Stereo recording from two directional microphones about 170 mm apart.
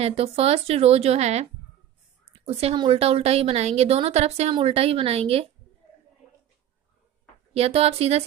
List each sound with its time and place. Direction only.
0.0 s a woman's voice: 35° right (ahead or behind)
7.5 s a woman's voice: 35° right (ahead or behind)